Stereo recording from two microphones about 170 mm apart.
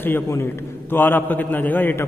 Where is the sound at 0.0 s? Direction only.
15° left (ahead or behind).